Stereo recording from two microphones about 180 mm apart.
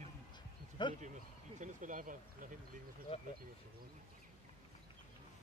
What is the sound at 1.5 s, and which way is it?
Speech, 45° right (ahead or behind).